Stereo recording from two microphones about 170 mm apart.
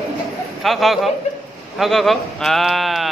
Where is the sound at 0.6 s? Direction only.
Centre (ahead or behind).